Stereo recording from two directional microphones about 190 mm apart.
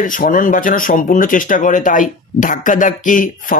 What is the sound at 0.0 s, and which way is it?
Speech, 45° left (ahead or behind).